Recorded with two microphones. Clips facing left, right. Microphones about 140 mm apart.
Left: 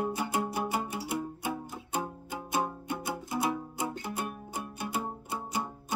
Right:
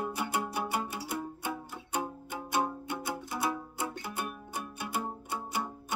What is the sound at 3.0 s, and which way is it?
Music, 20° left (ahead or behind).